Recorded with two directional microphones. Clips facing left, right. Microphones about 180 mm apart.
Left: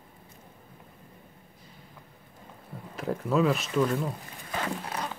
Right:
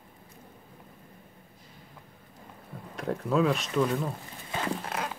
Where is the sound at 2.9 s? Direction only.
Centre (ahead or behind).